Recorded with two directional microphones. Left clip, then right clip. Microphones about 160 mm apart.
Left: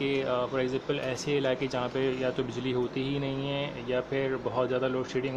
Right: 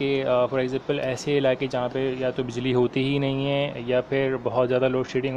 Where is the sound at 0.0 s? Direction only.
20° right (ahead or behind).